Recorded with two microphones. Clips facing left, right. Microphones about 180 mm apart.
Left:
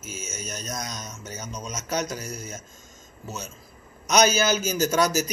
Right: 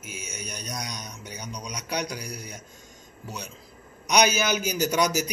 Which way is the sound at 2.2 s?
45° left (ahead or behind).